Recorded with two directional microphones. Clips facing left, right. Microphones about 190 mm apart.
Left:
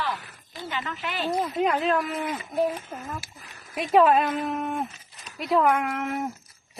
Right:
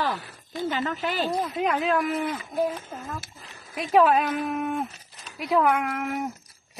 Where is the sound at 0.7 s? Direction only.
40° right (ahead or behind).